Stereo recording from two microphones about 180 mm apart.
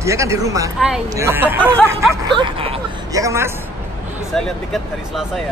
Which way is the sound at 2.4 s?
30° right (ahead or behind).